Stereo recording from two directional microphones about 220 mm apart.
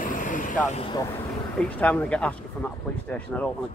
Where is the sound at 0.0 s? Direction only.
35° left (ahead or behind).